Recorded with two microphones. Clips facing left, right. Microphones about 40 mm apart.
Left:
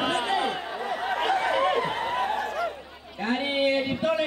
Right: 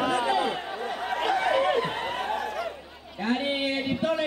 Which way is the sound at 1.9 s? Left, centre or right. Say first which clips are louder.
Left 3 dB; left.